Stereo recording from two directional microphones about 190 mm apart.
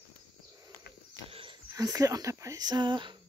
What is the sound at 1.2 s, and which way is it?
Wheeze, 30° right (ahead or behind).